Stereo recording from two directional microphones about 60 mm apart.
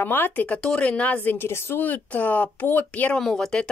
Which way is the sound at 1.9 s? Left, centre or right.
Left.